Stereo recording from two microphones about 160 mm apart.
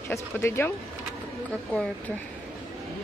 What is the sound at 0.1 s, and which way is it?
Speech, 15° left (ahead or behind).